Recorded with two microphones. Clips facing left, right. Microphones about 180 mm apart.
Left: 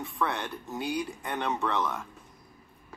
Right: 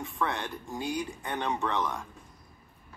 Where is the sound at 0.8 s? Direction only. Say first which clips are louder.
Left 1 dB; 15° right (ahead or behind).